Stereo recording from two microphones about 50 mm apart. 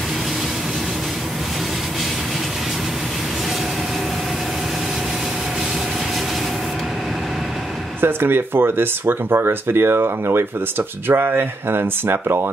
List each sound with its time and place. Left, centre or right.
8.0 s speech: right